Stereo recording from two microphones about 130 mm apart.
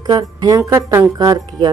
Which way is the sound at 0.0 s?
30° right (ahead or behind).